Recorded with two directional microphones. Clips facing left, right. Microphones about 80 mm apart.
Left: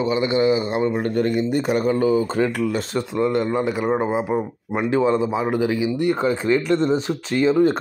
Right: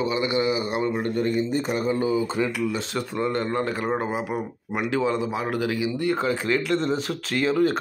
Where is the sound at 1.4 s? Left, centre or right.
Left.